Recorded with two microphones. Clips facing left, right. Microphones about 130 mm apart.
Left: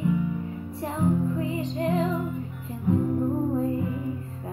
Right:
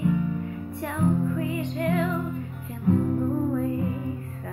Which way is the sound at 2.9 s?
15° left (ahead or behind).